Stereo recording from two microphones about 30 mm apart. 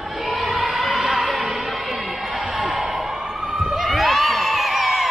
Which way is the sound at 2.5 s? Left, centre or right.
Centre.